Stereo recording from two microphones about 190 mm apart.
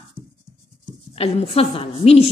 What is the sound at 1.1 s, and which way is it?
Speech, 30° left (ahead or behind).